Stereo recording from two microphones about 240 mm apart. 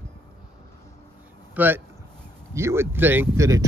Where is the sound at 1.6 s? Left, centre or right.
Centre.